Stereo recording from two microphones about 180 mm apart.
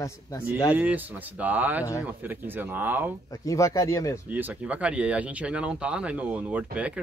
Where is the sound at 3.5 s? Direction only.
15° left (ahead or behind).